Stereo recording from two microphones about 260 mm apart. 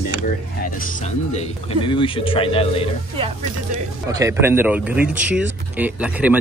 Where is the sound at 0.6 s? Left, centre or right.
Left.